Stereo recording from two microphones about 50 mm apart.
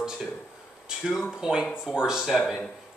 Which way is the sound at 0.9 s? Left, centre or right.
Centre.